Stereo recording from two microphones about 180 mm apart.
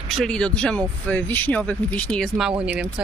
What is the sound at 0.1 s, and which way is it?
Speech, 5° left (ahead or behind).